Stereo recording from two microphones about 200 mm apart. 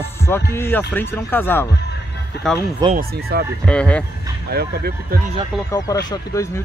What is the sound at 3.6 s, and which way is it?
Speech, 5° left (ahead or behind).